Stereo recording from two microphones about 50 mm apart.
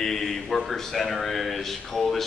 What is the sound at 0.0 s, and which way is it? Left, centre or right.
A man's voice, centre.